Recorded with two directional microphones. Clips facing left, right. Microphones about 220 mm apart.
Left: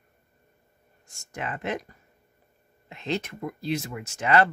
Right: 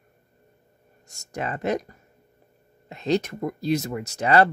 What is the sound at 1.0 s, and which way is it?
Speech, 40° right (ahead or behind).